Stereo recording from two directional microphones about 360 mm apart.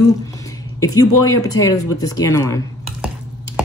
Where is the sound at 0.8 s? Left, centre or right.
Centre.